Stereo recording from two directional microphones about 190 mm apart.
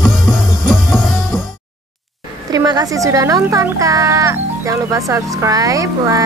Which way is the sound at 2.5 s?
20° right (ahead or behind).